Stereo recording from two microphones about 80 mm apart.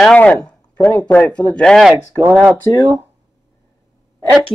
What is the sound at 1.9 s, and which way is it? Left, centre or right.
Speech, right.